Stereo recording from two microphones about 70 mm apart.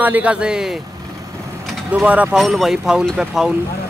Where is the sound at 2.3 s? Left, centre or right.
Centre.